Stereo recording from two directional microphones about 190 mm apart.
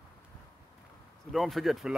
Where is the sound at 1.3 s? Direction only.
Centre (ahead or behind).